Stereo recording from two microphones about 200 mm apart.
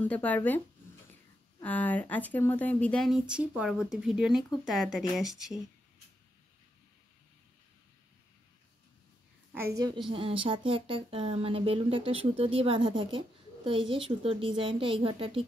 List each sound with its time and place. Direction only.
0.0 s speech: 10° left (ahead or behind)
1.6 s speech: 10° left (ahead or behind)
10.0 s speech: 25° right (ahead or behind)